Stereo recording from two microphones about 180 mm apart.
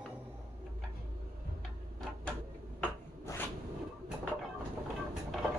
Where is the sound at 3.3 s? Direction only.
15° left (ahead or behind).